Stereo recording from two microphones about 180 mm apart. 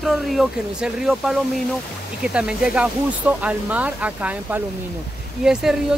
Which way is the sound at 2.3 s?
5° right (ahead or behind).